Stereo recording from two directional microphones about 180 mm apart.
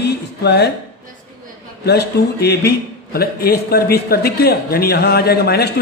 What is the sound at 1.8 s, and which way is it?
Speech, 65° left (ahead or behind).